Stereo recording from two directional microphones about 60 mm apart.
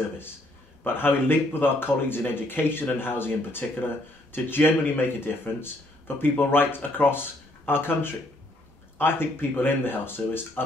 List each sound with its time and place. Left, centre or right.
0.8 s speech: left